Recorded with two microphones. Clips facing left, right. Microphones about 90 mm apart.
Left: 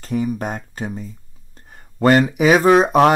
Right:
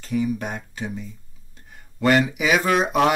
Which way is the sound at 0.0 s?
40° left (ahead or behind).